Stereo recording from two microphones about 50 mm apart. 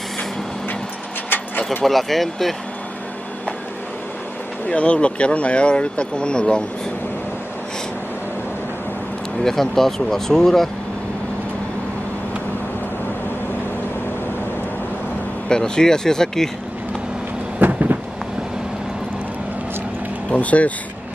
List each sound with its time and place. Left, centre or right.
1.9 s speech: centre
4.6 s speech: left
9.4 s speech: centre
15.4 s speech: centre
17.6 s a sound: right
20.2 s speech: left